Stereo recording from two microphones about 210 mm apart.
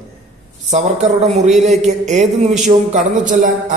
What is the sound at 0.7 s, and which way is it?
A woman's voice, 35° right (ahead or behind).